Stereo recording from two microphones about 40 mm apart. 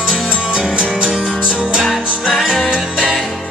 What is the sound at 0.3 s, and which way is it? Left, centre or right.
Music, right.